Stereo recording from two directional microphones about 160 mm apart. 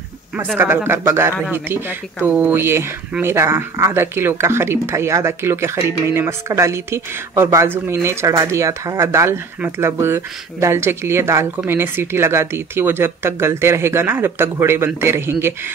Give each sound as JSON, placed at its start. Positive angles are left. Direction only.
{"t": 0.6, "sound": "speech", "side_deg": -15}